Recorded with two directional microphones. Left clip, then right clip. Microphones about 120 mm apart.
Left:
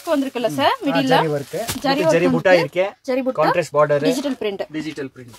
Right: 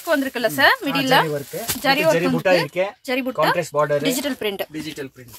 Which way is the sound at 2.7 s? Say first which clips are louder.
Left 2 dB; 50° left (ahead or behind).